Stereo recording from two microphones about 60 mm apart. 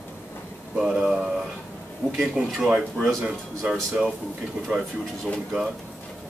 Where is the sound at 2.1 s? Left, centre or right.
Centre.